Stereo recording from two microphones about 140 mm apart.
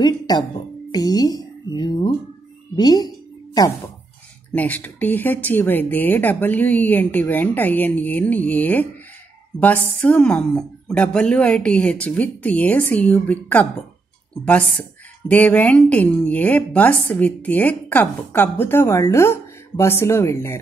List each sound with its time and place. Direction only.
0.9 s music: 30° left (ahead or behind)
4.5 s speech: 10° left (ahead or behind)
10.0 s speech: 5° left (ahead or behind)